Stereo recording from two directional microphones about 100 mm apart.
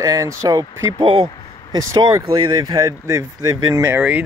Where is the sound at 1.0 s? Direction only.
60° right (ahead or behind).